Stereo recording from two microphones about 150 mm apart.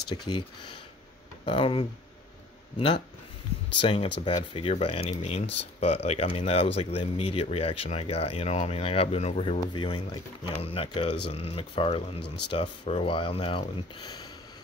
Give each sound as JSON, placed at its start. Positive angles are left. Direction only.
{"t": 0.1, "sound": "speech", "side_deg": 30}
{"t": 1.4, "sound": "speech", "side_deg": 35}
{"t": 3.8, "sound": "speech", "side_deg": 35}
{"t": 12.8, "sound": "speech", "side_deg": 40}